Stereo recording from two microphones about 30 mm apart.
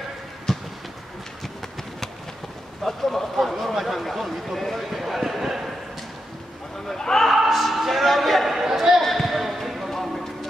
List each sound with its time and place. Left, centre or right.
0.5 s a sound: centre
2.8 s speech: centre
6.9 s speech: centre
7.3 s music: centre
8.5 s chatter: centre
9.0 s basketball bounce: centre
9.8 s clip-clop: centre